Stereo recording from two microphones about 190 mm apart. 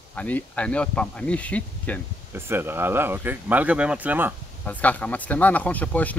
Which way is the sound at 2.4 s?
10° right (ahead or behind).